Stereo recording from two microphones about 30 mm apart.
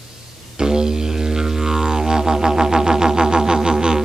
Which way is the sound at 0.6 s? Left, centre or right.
Right.